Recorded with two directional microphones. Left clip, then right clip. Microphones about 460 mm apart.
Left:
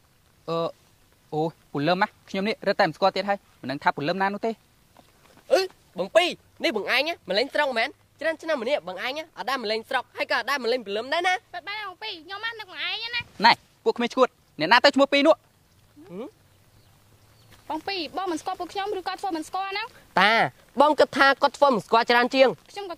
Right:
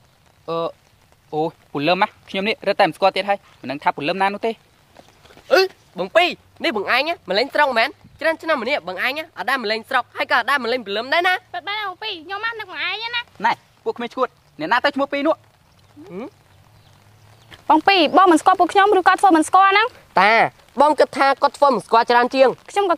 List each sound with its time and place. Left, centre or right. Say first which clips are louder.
0.5 s speech: right 4 dB; left
5.5 s speech: right 6 dB; left
17.6 s speech: right 16 dB; right
20.2 s speech: right 5 dB; left